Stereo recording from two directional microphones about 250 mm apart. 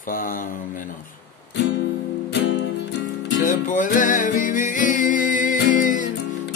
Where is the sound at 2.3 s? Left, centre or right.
Left.